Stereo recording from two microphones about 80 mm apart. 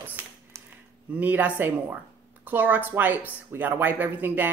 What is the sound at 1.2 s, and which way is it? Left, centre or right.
Speech, right.